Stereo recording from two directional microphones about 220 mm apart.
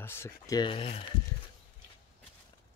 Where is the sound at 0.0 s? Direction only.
10° left (ahead or behind).